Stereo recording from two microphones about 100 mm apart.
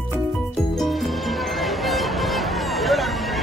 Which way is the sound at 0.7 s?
Centre (ahead or behind).